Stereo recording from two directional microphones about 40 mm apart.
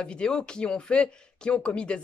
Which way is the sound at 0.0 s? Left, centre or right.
Left.